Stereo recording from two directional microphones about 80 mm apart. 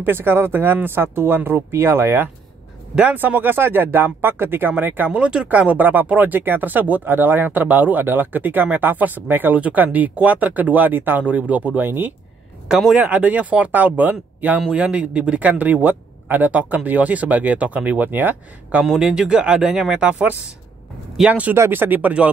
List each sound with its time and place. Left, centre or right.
0.0 s speech: right
3.0 s speech: right
12.6 s speech: centre
13.0 s speech: centre
18.8 s speech: centre